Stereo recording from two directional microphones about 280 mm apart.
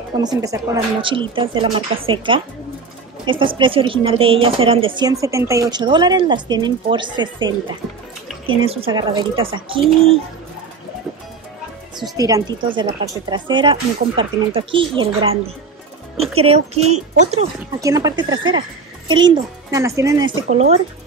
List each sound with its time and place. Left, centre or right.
0.2 s a woman's voice: centre
12.2 s a woman's voice: centre
17.7 s speech: centre
20.4 s a woman's voice: right